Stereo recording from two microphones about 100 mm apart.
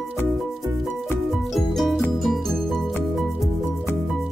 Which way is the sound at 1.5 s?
Centre (ahead or behind).